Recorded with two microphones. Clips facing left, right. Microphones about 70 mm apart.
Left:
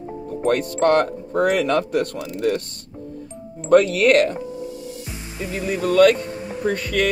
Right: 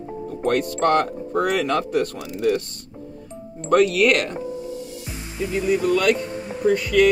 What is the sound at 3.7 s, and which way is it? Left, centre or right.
Speech, left.